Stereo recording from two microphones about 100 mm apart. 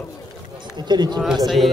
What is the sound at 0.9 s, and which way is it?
Speech, 45° right (ahead or behind).